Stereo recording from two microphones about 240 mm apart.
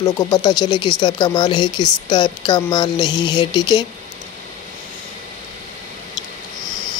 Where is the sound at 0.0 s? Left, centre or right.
Centre.